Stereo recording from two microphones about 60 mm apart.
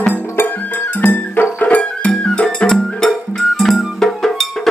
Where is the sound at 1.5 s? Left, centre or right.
Left.